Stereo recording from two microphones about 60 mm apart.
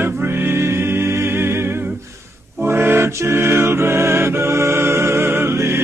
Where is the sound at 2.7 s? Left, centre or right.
Right.